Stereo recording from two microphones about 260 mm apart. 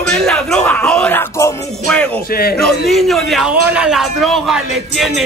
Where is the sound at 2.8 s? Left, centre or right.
Centre.